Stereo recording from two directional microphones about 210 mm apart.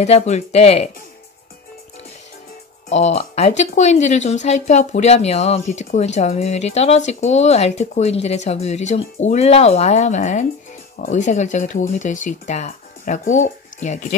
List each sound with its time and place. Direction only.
0.0 s speech: 30° left (ahead or behind)
2.9 s speech: 30° left (ahead or behind)